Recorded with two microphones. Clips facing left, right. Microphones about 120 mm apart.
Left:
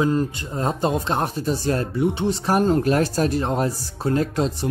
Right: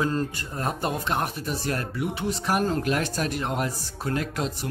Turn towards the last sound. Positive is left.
turn(degrees=30)  # may be behind; listen again after turning